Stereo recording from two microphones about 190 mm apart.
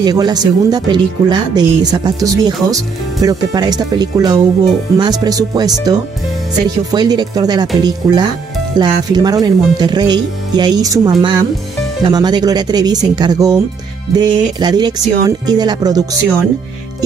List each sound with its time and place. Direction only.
0.0 s speech: 20° right (ahead or behind)